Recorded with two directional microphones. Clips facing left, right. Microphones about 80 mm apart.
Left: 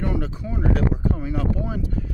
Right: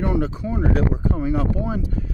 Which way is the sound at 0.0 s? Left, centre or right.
Right.